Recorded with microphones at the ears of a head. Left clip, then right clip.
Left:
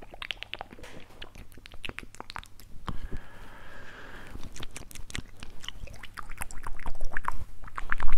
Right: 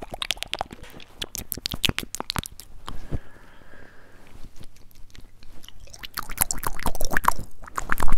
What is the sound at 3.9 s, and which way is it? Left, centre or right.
Biting, left.